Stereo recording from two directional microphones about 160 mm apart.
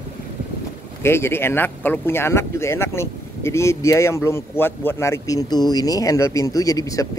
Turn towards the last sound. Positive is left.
turn(degrees=20)  # may be behind; listen again after turning